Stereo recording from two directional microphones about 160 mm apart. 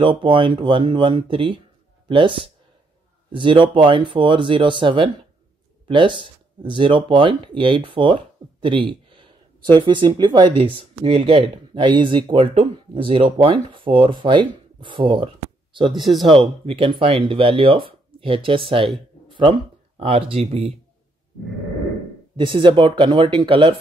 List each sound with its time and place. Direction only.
0.0 s speech: 30° right (ahead or behind)
16.0 s speech: centre (ahead or behind)
16.3 s speech: 35° right (ahead or behind)
20.0 s speech: 35° right (ahead or behind)
22.4 s speech: 30° right (ahead or behind)